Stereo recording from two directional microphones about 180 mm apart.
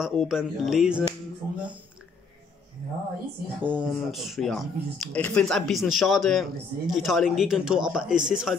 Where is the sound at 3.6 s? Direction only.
10° right (ahead or behind).